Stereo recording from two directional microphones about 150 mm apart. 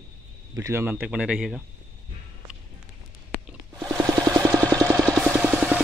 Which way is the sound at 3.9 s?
20° right (ahead or behind).